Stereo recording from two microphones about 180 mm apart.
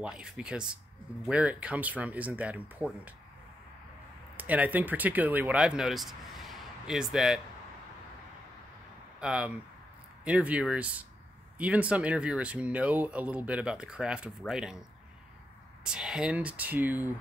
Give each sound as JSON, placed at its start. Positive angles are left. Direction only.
{"t": 0.0, "sound": "speech", "side_deg": -5}
{"t": 4.4, "sound": "speech", "side_deg": -10}
{"t": 9.2, "sound": "speech", "side_deg": -5}